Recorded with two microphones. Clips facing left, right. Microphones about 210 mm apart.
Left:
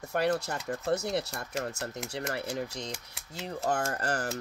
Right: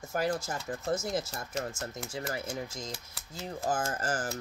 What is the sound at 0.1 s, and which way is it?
Speech, 65° left (ahead or behind).